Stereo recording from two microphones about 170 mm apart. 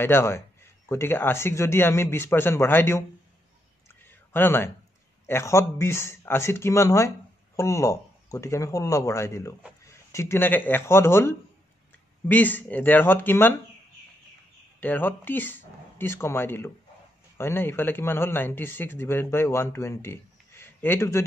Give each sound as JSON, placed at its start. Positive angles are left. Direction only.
{"t": 0.0, "sound": "speech", "side_deg": 15}
{"t": 4.3, "sound": "speech", "side_deg": 10}
{"t": 14.8, "sound": "speech", "side_deg": 10}